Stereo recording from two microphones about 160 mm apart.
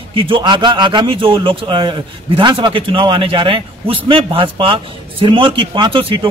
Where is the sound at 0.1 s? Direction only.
30° right (ahead or behind).